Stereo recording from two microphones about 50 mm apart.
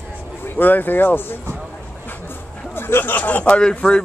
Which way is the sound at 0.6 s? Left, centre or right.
Left.